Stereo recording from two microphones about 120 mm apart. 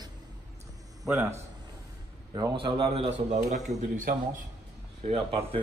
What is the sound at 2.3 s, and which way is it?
Speech, 40° right (ahead or behind).